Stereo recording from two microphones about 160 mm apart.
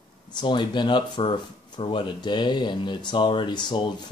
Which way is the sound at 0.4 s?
30° left (ahead or behind).